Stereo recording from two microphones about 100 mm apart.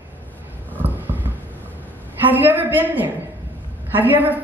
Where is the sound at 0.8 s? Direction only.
20° right (ahead or behind).